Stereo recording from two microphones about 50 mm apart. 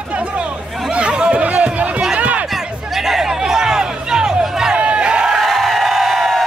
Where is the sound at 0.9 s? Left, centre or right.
Right.